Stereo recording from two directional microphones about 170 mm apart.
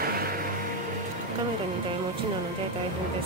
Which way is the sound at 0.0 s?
60° right (ahead or behind).